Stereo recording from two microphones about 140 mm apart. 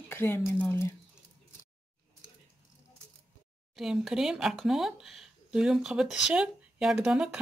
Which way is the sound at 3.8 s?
5° right (ahead or behind).